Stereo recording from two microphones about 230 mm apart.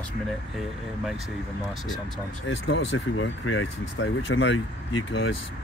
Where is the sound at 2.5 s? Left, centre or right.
Left.